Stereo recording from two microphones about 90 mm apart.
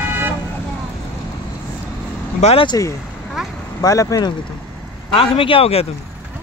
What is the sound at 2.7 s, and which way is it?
Speech, 40° left (ahead or behind).